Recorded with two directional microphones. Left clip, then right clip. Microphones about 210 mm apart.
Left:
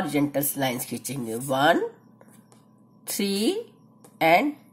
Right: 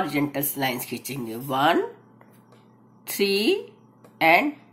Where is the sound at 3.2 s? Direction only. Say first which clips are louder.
Right 5 dB; 40° left (ahead or behind).